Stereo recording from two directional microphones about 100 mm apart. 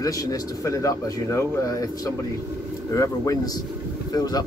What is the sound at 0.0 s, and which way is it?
Speech, 35° left (ahead or behind).